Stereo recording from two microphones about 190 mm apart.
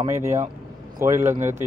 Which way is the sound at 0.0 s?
15° right (ahead or behind).